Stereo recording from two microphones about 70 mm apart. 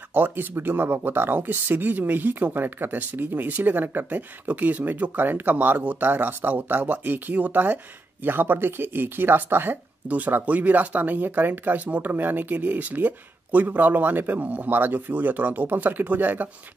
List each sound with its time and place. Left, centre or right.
0.1 s speech: right